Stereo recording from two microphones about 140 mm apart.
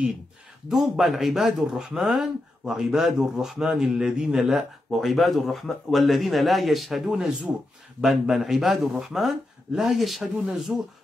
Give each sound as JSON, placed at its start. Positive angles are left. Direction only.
{"t": 0.7, "sound": "speech", "side_deg": 0}